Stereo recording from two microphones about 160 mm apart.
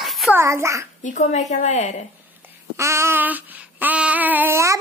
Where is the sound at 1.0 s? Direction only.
50° left (ahead or behind).